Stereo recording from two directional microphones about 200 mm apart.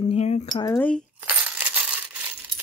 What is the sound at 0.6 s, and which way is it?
Speech, 10° left (ahead or behind).